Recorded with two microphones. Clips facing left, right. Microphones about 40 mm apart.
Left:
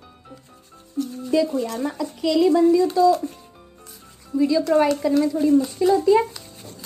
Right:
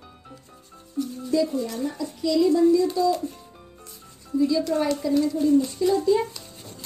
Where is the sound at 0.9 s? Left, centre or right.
Left.